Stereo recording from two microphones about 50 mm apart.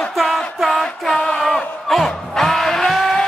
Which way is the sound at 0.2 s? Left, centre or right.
Centre.